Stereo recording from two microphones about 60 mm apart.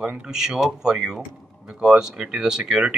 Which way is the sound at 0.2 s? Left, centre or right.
Centre.